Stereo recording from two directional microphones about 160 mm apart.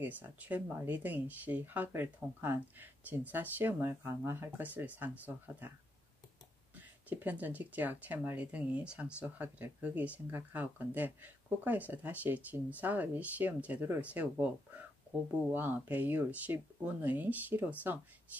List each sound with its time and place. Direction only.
0.0 s speech: 10° right (ahead or behind)
6.7 s speech: 10° right (ahead or behind)